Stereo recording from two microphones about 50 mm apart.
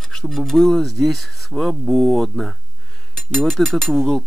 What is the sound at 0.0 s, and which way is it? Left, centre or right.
Speech, centre.